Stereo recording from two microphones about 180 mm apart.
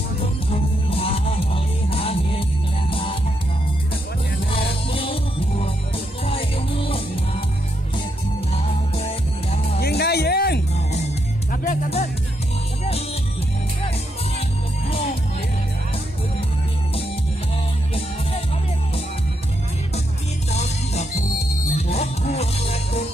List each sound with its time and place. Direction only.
0.2 s music: 35° left (ahead or behind)
4.9 s music: 30° left (ahead or behind)
9.8 s music: 65° left (ahead or behind)
11.5 s music: 50° left (ahead or behind)
20.5 s music: 40° left (ahead or behind)